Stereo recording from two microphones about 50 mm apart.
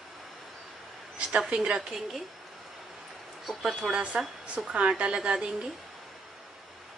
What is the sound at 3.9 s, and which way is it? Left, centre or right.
A woman's voice, right.